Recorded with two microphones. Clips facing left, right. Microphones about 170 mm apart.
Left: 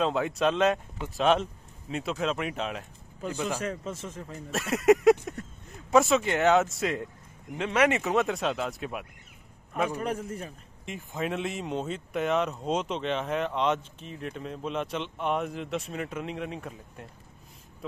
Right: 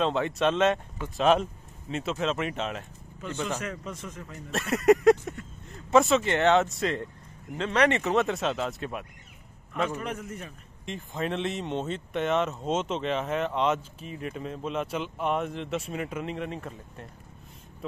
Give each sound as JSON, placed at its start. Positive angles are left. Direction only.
{"t": 0.0, "sound": "speech", "side_deg": 0}
{"t": 3.5, "sound": "speech", "side_deg": 30}
{"t": 4.5, "sound": "speech", "side_deg": 0}
{"t": 9.9, "sound": "a man's voice", "side_deg": 35}
{"t": 10.9, "sound": "speech", "side_deg": 5}